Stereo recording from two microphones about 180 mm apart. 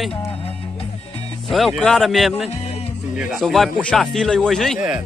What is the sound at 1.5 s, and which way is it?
Speech, centre (ahead or behind).